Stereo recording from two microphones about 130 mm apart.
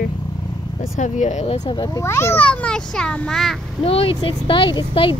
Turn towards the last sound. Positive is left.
turn(degrees=40)  # may be behind; listen again after turning